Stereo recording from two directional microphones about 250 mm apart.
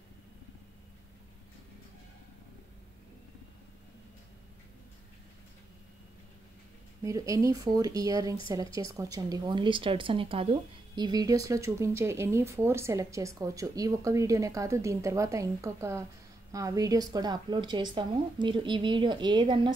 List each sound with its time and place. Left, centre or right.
7.0 s speech: centre